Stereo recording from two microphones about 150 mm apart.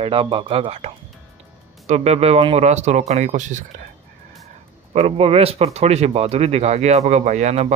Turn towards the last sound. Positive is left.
turn(degrees=-50)  # may be behind; listen again after turning